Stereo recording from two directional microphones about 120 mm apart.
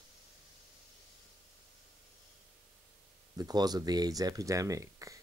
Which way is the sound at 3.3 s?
35° right (ahead or behind).